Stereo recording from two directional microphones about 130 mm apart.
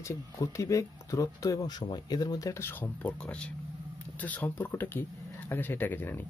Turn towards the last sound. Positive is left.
turn(degrees=15)  # may be behind; listen again after turning